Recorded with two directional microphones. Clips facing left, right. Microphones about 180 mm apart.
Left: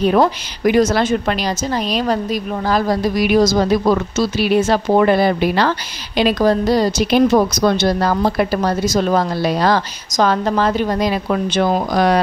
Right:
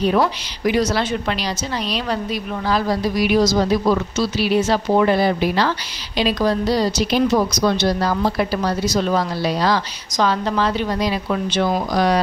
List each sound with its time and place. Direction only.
0.0 s a woman's voice: 50° left (ahead or behind)